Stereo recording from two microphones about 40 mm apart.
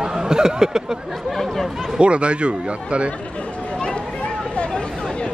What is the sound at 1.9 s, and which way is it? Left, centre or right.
Speech, right.